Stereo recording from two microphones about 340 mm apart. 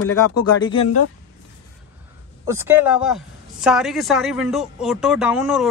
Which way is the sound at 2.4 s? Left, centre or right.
Centre.